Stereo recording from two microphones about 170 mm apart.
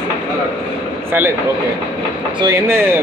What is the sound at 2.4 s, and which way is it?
Speech, 15° right (ahead or behind).